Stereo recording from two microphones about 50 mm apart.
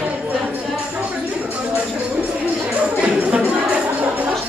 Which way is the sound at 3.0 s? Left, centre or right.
Right.